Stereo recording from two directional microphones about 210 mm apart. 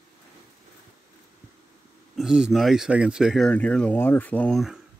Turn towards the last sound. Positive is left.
turn(degrees=0)  # may be behind; listen again after turning